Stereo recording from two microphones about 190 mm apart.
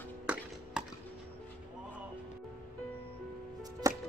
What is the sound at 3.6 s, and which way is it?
Music, 20° right (ahead or behind).